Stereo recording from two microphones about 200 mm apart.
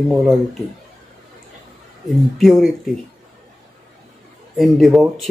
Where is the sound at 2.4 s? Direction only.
Centre (ahead or behind).